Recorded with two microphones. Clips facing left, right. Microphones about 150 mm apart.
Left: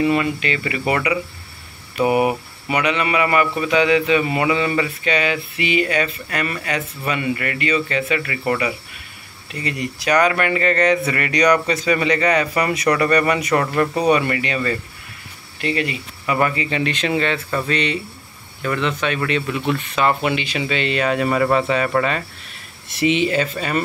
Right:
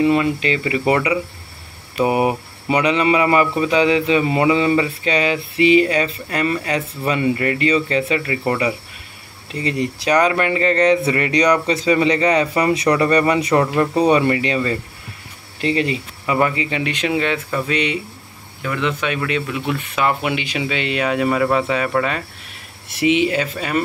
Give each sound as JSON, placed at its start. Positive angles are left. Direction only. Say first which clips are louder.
{"t": 0.0, "sound": "speech", "louder": "right 2 dB", "side_deg": -25}
{"t": 16.3, "sound": "speech", "louder": "right 1 dB", "side_deg": -20}